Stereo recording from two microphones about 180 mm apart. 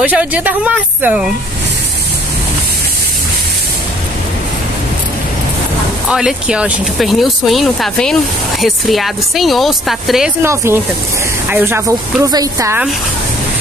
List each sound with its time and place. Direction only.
0.0 s speech: 10° right (ahead or behind)
6.0 s speech: 5° right (ahead or behind)
10.4 s speech: 15° right (ahead or behind)